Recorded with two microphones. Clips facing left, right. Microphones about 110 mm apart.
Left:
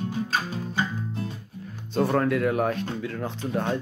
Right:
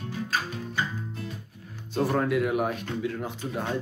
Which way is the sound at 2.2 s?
10° right (ahead or behind).